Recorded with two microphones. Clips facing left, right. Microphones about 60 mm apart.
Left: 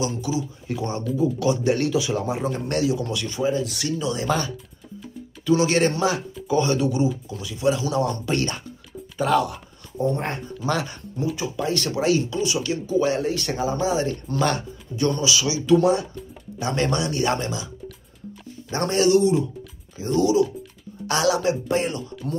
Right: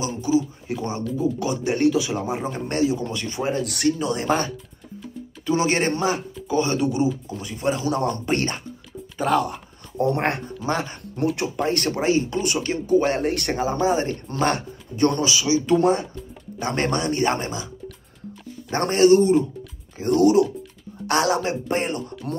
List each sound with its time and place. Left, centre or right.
0.0 s a man's voice: right
0.7 s a man's voice: centre
1.9 s a man's voice: centre
2.4 s a man's voice: right
3.4 s a man's voice: right
9.9 s speech: right
10.6 s a man's voice: right
11.3 s speech: right
18.7 s speech: right
20.0 s speech: right